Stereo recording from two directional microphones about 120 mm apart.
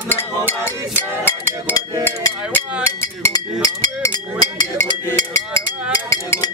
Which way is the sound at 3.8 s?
35° left (ahead or behind).